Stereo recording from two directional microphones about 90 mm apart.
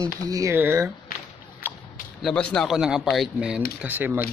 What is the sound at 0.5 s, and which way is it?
Speech, 25° right (ahead or behind).